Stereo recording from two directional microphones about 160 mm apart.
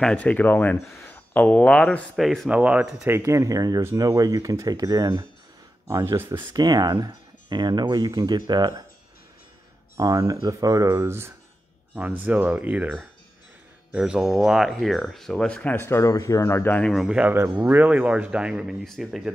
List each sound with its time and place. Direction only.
0.0 s speech: 10° left (ahead or behind); by 6.4 s 15° right (ahead or behind)
6.5 s speech: 25° right (ahead or behind)
9.9 s speech: 25° right (ahead or behind)
13.9 s speech: 5° right (ahead or behind); by 16.9 s 10° left (ahead or behind)
16.9 s speech: 5° right (ahead or behind)